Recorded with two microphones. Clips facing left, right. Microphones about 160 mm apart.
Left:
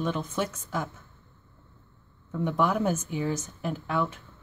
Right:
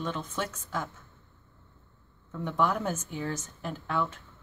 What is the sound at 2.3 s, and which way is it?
Speech, 10° left (ahead or behind).